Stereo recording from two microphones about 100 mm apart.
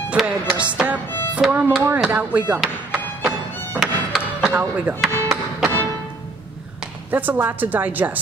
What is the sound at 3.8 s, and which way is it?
Music, centre (ahead or behind).